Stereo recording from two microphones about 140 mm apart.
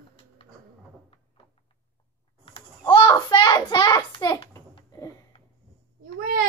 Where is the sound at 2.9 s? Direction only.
35° left (ahead or behind).